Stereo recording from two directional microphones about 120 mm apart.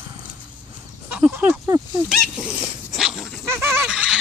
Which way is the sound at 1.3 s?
20° right (ahead or behind).